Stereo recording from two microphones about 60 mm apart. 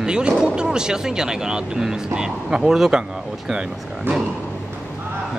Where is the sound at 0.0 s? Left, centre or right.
Centre.